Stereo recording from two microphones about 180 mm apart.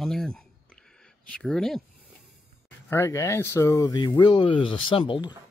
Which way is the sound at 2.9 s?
15° left (ahead or behind).